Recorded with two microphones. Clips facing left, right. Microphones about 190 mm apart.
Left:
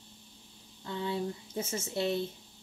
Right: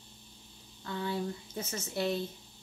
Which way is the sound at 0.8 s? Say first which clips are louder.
Left 1 dB; 20° left (ahead or behind).